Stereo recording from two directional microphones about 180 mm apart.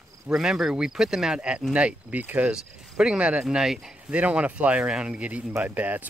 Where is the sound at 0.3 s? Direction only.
5° right (ahead or behind).